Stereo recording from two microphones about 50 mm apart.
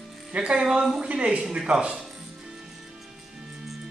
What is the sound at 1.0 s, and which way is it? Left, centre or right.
A woman's voice, right.